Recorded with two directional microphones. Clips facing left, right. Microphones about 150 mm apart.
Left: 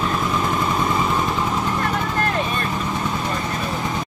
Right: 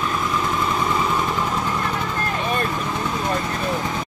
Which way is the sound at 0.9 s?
10° left (ahead or behind).